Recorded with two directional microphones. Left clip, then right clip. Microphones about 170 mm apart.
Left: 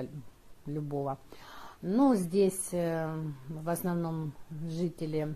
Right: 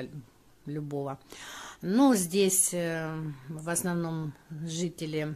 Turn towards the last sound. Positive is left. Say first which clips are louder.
# right 1 dB
turn(degrees=-5)  # may be behind; listen again after turning